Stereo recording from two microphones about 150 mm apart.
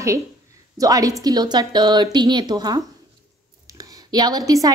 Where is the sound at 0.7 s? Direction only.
25° right (ahead or behind).